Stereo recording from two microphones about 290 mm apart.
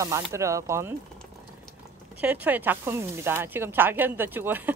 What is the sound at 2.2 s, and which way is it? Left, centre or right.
Speech, centre.